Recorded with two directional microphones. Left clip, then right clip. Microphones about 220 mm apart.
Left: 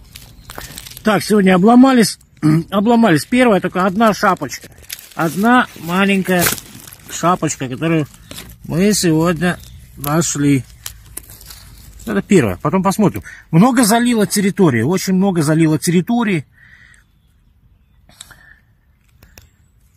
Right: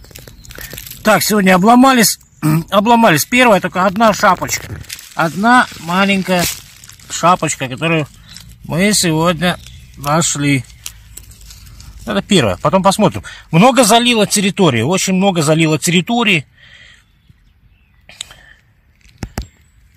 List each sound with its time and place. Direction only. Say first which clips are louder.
1.0 s speech: right 3 dB; 30° right (ahead or behind)
12.0 s speech: right 1 dB; 25° right (ahead or behind)
18.0 s whispering: right 9 dB; 10° right (ahead or behind)